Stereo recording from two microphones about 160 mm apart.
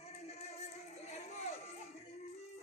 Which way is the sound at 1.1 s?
45° left (ahead or behind).